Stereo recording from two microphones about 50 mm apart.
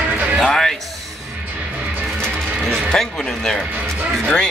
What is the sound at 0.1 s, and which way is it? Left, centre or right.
Music, right.